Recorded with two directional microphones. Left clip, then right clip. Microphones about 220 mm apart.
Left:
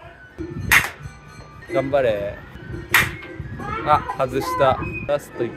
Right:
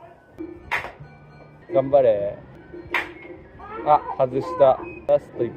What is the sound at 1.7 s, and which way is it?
Speech, 10° left (ahead or behind).